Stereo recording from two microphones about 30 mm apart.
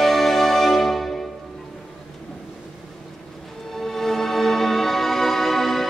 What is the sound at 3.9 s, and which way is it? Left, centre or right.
Music, centre.